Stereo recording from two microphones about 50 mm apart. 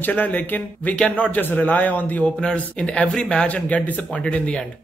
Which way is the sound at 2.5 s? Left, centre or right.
Left.